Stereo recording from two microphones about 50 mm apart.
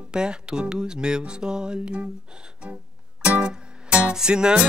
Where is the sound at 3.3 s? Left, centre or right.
Centre.